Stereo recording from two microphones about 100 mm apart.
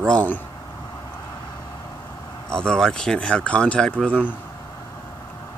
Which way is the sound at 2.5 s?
5° left (ahead or behind).